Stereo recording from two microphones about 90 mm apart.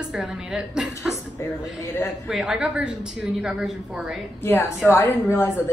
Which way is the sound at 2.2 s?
5° right (ahead or behind).